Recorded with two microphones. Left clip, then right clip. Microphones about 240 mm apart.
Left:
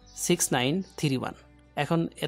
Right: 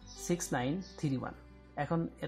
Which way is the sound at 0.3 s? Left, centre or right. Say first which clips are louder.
Left 9 dB; left.